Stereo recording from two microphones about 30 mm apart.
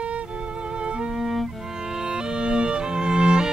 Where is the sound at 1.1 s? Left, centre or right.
Centre.